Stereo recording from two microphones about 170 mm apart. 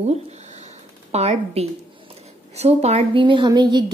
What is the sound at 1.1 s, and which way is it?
A woman's voice, 40° right (ahead or behind).